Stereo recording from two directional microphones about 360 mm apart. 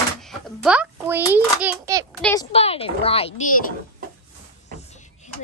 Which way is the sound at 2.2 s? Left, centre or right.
Centre.